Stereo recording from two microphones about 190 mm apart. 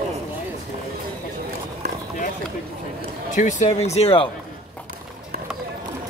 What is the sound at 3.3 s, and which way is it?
Speech, 40° left (ahead or behind).